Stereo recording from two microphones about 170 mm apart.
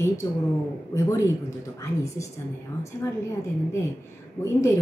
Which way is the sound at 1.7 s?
20° left (ahead or behind).